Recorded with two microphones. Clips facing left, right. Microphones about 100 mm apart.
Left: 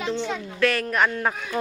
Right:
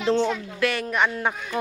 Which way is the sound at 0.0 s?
40° right (ahead or behind).